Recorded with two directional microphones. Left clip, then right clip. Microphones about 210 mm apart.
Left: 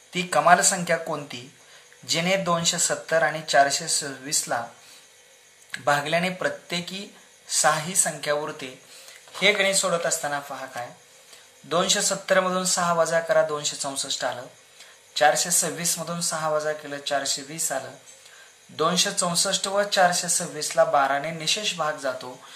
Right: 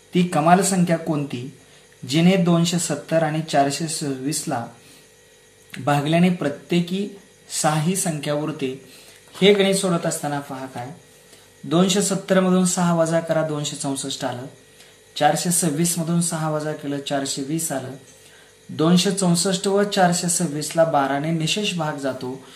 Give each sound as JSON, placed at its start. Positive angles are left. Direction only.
{"t": 0.1, "sound": "speech", "side_deg": 20}
{"t": 5.7, "sound": "speech", "side_deg": 20}